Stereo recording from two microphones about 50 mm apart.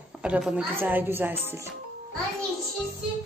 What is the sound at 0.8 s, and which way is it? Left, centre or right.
Speech, right.